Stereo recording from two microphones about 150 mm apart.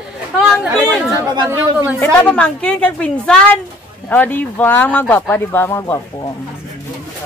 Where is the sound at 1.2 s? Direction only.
20° right (ahead or behind).